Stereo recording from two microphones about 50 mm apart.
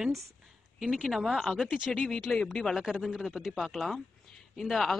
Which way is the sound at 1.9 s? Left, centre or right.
Centre.